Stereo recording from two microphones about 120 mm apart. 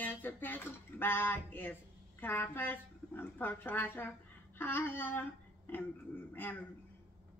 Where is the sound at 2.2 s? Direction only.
20° left (ahead or behind).